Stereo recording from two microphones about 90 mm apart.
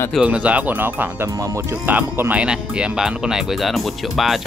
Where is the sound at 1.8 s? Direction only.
20° right (ahead or behind); by 4.4 s centre (ahead or behind).